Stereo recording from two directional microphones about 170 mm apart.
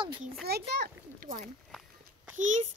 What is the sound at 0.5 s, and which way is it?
A child's voice, 70° right (ahead or behind).